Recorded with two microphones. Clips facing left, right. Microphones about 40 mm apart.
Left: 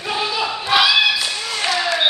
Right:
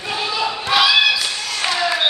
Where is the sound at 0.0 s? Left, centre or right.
Centre.